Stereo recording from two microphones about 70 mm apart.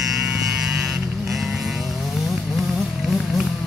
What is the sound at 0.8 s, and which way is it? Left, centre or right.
Vehicle, centre.